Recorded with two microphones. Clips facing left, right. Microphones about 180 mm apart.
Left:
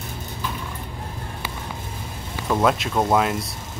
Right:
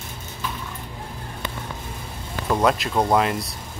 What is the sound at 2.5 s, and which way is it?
Speech, centre (ahead or behind).